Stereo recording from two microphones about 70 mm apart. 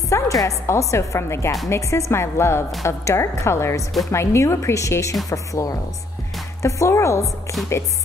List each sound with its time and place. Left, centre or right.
0.1 s a woman's voice: left